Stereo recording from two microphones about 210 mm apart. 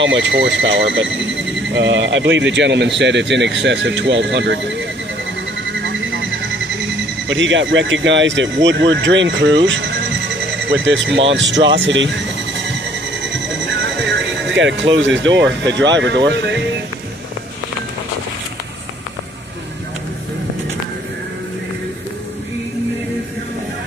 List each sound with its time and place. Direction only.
0.0 s speech: 60° right (ahead or behind)
7.2 s speech: 60° right (ahead or behind)
14.5 s speech: 60° right (ahead or behind)